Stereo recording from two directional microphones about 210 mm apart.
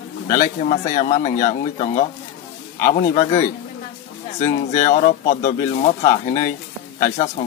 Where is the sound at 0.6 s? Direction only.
35° left (ahead or behind).